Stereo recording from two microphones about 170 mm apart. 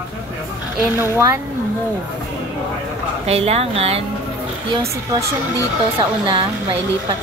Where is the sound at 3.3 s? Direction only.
35° right (ahead or behind).